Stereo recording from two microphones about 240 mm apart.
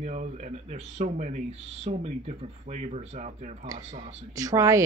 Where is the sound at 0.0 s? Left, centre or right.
Right.